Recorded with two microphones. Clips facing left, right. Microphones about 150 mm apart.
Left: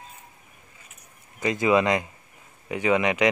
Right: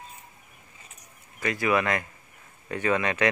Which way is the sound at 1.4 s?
20° left (ahead or behind).